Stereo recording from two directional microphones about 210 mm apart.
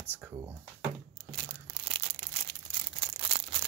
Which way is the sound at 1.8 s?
25° right (ahead or behind).